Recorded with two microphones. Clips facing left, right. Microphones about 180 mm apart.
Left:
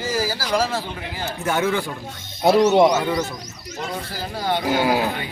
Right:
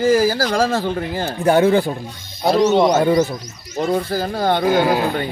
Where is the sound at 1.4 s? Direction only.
35° right (ahead or behind).